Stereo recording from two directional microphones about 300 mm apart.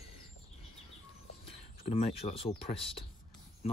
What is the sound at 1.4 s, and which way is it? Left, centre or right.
Speech, centre.